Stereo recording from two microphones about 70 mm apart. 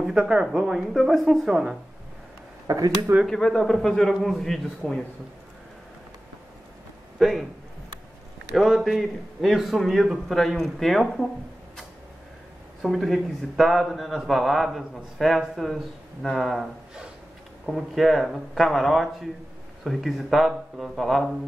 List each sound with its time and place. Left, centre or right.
0.0 s speech: centre
2.6 s speech: right
3.3 s a man's voice: centre
7.2 s a man's voice: centre
8.5 s speech: centre
12.8 s speech: centre